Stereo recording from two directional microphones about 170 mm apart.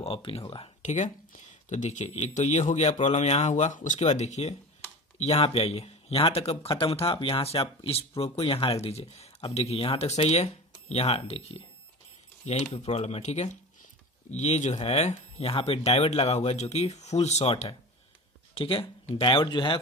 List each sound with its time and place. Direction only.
0.0 s speech: 35° left (ahead or behind)
0.8 s speech: 45° left (ahead or behind)
12.7 s speech: 40° left (ahead or behind)